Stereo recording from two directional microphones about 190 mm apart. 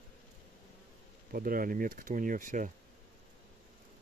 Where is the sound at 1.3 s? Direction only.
50° right (ahead or behind).